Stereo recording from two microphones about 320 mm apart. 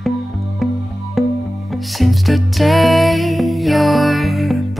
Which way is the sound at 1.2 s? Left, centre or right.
Centre.